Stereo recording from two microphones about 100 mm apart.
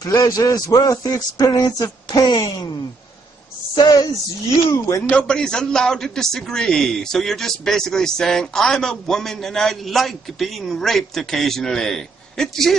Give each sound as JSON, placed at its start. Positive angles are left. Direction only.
{"t": 0.0, "sound": "a man's voice", "side_deg": 40}
{"t": 3.7, "sound": "speech", "side_deg": 45}
{"t": 4.7, "sound": "a man's voice", "side_deg": 30}
{"t": 5.1, "sound": "a man's voice", "side_deg": 5}